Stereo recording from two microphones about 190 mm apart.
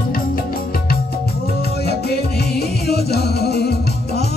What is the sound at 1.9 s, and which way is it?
Music, 55° left (ahead or behind).